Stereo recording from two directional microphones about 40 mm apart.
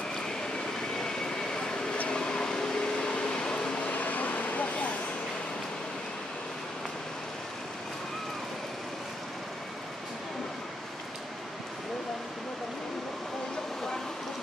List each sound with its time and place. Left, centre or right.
0.7 s vehicle: centre
2.0 s a sound: left
3.9 s vehicle: left